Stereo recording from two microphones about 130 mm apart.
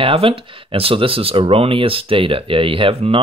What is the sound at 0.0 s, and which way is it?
Speech, 45° right (ahead or behind).